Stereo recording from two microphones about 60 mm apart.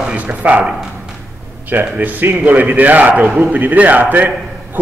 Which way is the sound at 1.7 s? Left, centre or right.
Right.